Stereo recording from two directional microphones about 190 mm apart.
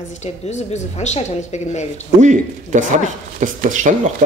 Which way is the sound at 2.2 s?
40° right (ahead or behind).